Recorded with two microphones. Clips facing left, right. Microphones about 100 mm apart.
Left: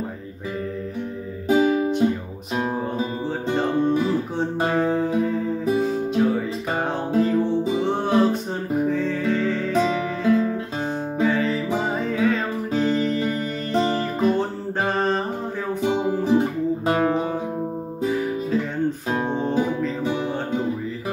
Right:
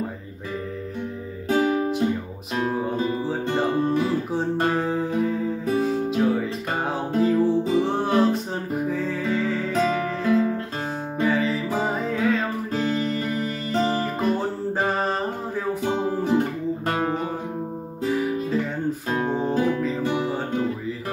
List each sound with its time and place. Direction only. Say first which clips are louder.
1.6 s music: left 1 dB; 5° left (ahead or behind)
2.5 s music: even; 20° left (ahead or behind)
2.8 s music: right 1 dB; 5° left (ahead or behind)
14.8 s a sound: left 3 dB; 5° right (ahead or behind)
15.8 s music: left 5 dB; 10° left (ahead or behind); by 20.6 s 5° right (ahead or behind)